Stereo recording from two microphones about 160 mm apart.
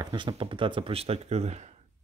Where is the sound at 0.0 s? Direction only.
25° right (ahead or behind).